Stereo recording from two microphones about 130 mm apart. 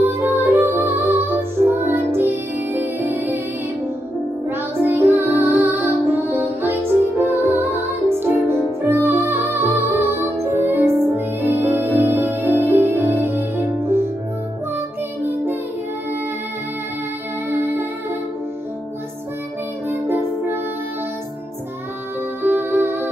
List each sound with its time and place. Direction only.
0.2 s music: 15° right (ahead or behind)
4.5 s music: 15° right (ahead or behind)
17.5 s music: 15° right (ahead or behind)
19.9 s music: 15° right (ahead or behind)
22.4 s music: 15° right (ahead or behind)